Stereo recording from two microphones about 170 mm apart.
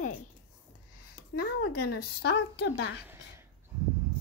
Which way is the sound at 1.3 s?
65° left (ahead or behind).